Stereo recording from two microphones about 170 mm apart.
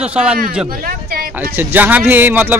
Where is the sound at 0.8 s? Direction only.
60° right (ahead or behind).